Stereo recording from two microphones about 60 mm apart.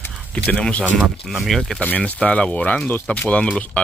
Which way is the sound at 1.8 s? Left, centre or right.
Left.